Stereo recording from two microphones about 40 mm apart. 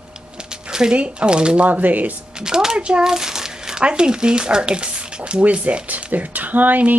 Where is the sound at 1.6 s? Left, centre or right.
Right.